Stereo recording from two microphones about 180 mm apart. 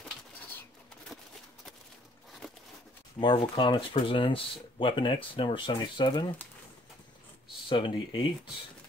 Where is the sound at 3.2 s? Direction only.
25° left (ahead or behind).